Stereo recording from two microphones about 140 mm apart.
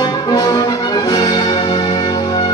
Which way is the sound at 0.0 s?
30° left (ahead or behind).